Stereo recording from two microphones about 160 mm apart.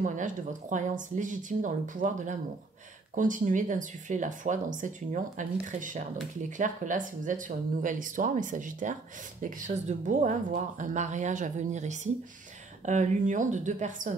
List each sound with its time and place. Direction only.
0.0 s speech: 55° right (ahead or behind)